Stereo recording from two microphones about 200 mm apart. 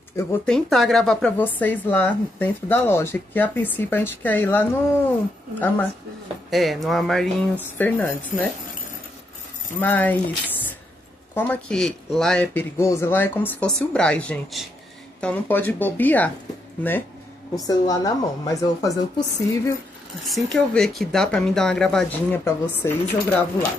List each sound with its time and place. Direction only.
0.1 s speech: 10° left (ahead or behind)
9.8 s speech: 10° left (ahead or behind)
11.3 s speech: 10° left (ahead or behind)
12.8 s speech: 15° left (ahead or behind)
17.6 s speech: 20° left (ahead or behind)
20.2 s speech: centre (ahead or behind)